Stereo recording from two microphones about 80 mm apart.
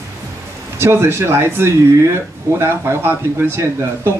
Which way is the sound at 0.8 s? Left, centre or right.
Right.